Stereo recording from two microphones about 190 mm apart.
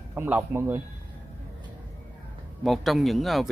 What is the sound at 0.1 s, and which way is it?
Speech, 10° right (ahead or behind).